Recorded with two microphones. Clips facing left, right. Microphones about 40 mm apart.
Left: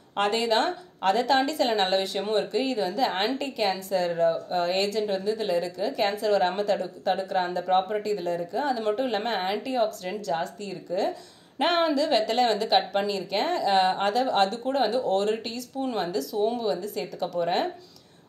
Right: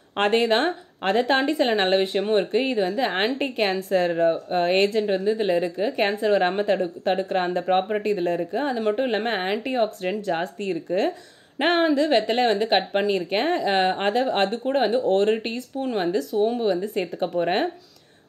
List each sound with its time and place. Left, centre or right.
0.1 s a woman's voice: right
3.3 s a woman's voice: right
11.5 s a woman's voice: centre; by 17.6 s right